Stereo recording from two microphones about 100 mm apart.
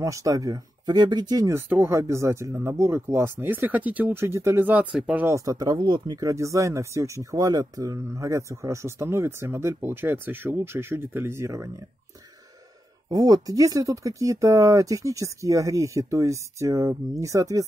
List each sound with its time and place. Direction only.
0.0 s speech: 35° right (ahead or behind)
1.5 s speech: 25° right (ahead or behind)
5.3 s speech: 35° right (ahead or behind)
13.1 s speech: 40° right (ahead or behind)